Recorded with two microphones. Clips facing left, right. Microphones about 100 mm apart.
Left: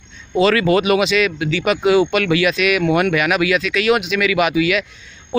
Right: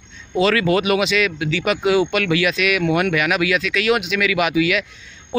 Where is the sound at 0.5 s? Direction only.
10° left (ahead or behind).